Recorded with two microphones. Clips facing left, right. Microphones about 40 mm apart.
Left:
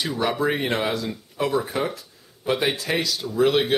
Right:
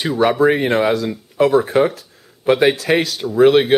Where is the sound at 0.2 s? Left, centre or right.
Right.